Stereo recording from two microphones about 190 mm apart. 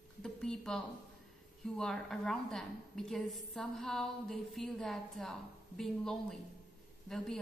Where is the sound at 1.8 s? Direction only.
5° left (ahead or behind).